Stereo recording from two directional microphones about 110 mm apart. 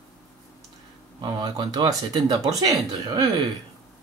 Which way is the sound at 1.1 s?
45° right (ahead or behind).